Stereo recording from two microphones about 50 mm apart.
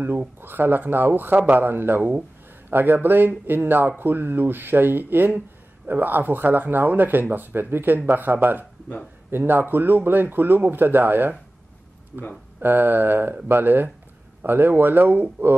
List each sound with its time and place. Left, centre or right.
0.4 s speech: right
12.1 s speech: centre
12.5 s speech: right